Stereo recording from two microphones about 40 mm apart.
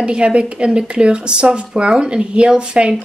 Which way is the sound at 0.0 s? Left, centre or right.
Right.